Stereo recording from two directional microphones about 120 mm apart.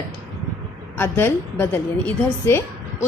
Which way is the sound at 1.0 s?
20° left (ahead or behind).